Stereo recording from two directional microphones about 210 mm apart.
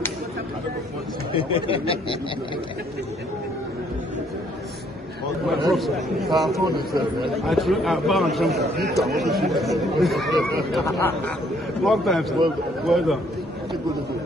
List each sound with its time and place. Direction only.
1.3 s speech: 25° left (ahead or behind)
5.5 s a man's voice: centre (ahead or behind)